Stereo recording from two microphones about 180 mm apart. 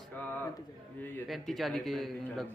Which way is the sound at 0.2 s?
10° left (ahead or behind).